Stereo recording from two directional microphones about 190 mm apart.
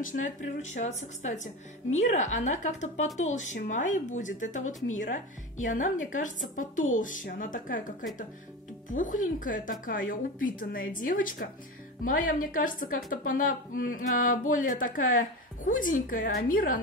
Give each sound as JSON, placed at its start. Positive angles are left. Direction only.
{"t": 0.0, "sound": "a woman's voice", "side_deg": 45}
{"t": 8.9, "sound": "a woman's voice", "side_deg": 45}